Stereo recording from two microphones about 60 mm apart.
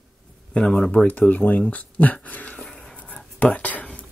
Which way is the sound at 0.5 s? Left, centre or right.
Centre.